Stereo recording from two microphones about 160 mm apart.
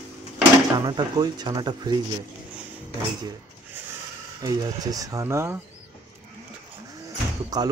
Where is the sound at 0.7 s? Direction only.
25° right (ahead or behind).